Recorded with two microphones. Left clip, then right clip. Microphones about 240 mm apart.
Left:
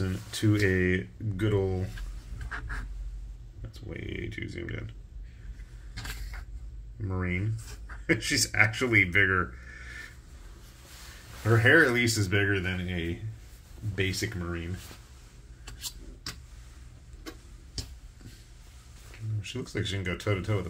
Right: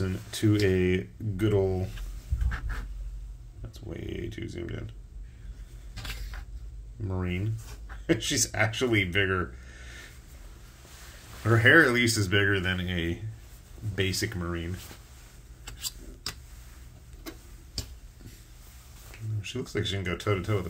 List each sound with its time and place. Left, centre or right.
0.0 s a sound: centre
0.7 s speech: centre
3.9 s speech: centre
7.1 s speech: centre
11.4 s speech: centre
19.4 s speech: centre